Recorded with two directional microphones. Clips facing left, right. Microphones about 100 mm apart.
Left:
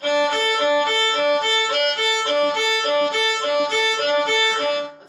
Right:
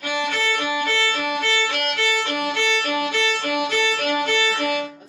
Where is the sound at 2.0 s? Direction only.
25° left (ahead or behind).